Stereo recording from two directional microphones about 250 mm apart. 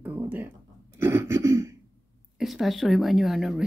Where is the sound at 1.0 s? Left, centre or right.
Centre.